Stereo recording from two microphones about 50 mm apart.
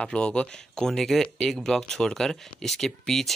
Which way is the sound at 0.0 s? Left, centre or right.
Left.